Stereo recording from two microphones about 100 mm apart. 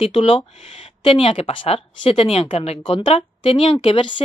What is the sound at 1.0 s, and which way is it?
Speech, 65° left (ahead or behind).